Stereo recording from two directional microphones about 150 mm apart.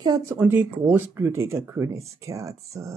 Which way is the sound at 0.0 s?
25° right (ahead or behind).